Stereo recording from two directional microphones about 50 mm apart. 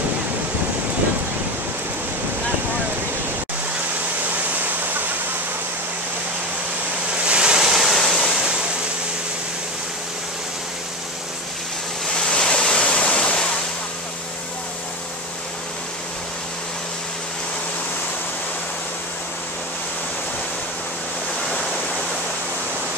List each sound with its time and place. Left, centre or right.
4.6 s waterfall: right
7.2 s a sound: centre
12.2 s waves: centre